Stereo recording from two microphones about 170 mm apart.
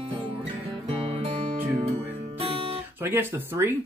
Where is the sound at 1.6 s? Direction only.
10° right (ahead or behind).